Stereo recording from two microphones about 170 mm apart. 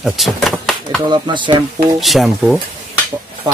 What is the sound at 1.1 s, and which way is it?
Speech, 30° right (ahead or behind).